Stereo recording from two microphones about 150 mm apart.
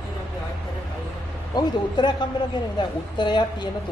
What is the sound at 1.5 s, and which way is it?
A man's voice, 30° left (ahead or behind).